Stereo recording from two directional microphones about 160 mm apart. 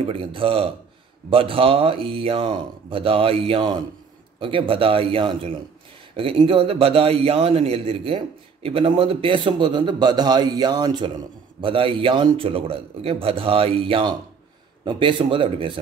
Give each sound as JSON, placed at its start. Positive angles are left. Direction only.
{"t": 0.0, "sound": "a man's voice", "side_deg": -35}